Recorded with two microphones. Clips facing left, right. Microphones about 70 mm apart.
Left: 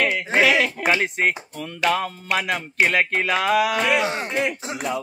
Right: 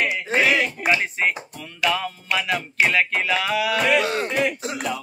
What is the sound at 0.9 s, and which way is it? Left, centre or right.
Speech, left.